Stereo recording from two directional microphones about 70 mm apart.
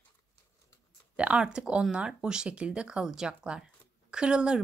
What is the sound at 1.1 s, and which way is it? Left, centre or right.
Speech, centre.